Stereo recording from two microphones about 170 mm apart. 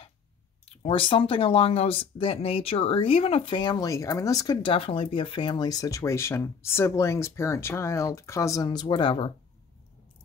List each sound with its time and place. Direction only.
0.8 s speech: 30° left (ahead or behind)